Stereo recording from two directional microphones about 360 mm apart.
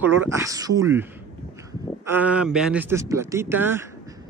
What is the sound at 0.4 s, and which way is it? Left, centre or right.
Speech, centre.